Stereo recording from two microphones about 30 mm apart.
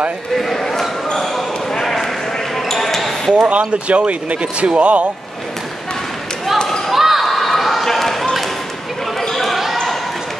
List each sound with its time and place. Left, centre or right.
0.4 s basketball bounce: centre
3.4 s speech: right
6.9 s basketball bounce: centre
7.2 s a sound: centre
7.8 s run: centre
9.3 s basketball bounce: centre